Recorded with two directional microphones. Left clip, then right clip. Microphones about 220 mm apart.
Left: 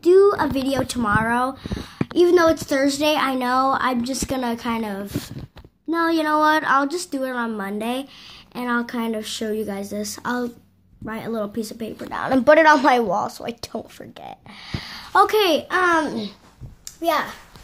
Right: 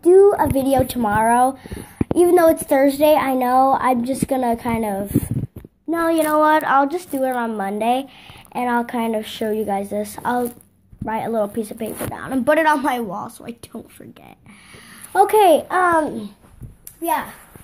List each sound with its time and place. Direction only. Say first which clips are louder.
0.0 s a sound: right 3 dB; 10° left (ahead or behind)
0.7 s a woman's voice: right 4 dB; centre (ahead or behind)
5.9 s speech: right 2 dB; 15° left (ahead or behind)
12.4 s speech: left 3 dB; centre (ahead or behind)
16.0 s a child's voice: right 2 dB; 25° left (ahead or behind)